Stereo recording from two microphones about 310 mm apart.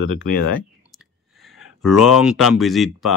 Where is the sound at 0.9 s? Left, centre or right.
Centre.